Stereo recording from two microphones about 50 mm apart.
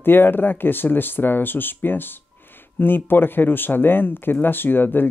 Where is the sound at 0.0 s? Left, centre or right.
Left.